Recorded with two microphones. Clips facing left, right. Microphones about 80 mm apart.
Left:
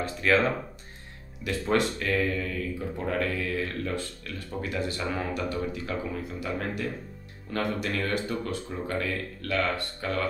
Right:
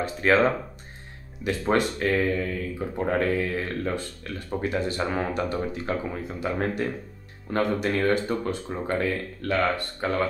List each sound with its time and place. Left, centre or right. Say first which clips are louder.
0.2 s speech: right 3 dB; right